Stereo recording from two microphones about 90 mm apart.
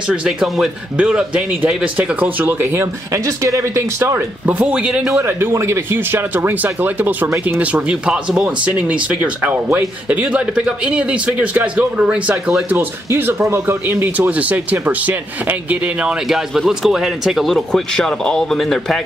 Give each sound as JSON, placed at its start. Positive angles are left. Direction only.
{"t": 0.1, "sound": "a man's voice", "side_deg": -5}
{"t": 4.0, "sound": "a man's voice", "side_deg": -20}
{"t": 5.1, "sound": "a man's voice", "side_deg": -30}
{"t": 12.6, "sound": "speech", "side_deg": -25}
{"t": 16.3, "sound": "speech", "side_deg": -5}